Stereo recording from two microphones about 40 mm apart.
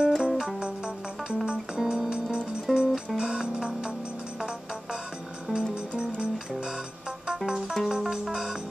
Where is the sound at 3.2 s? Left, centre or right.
Centre.